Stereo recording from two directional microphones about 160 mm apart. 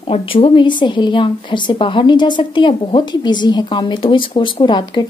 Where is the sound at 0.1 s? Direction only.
35° left (ahead or behind).